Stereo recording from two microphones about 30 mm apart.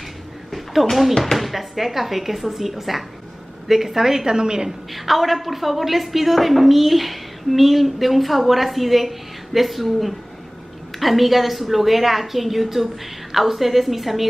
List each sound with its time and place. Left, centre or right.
0.5 s a sound: centre
1.2 s a woman's voice: centre
4.4 s a woman's voice: right
4.6 s a woman's voice: centre